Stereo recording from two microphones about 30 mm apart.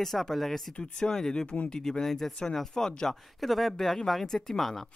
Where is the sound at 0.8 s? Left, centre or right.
Left.